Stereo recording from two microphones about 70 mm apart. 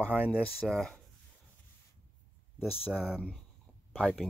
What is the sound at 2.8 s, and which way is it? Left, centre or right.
Speech, centre.